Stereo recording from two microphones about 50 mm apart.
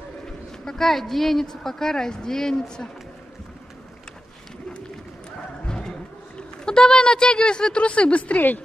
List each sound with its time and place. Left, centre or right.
0.7 s a woman's voice: centre
5.7 s a sound: centre
6.6 s a woman's voice: centre